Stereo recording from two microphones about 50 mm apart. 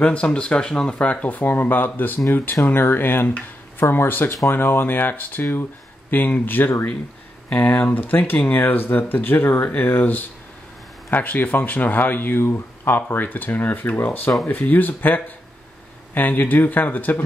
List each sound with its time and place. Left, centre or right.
0.0 s speech: left
0.9 s speech: left